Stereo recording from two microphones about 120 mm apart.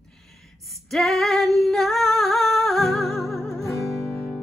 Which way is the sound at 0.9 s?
Centre (ahead or behind).